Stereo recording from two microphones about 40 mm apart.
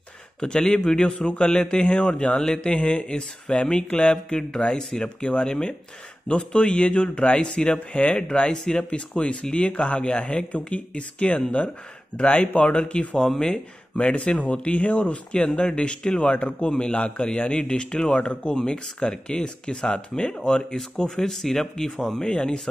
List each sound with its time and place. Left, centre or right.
0.4 s a man's voice: centre
1.1 s a man's voice: left